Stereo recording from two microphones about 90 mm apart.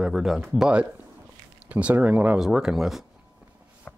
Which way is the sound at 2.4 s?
5° right (ahead or behind).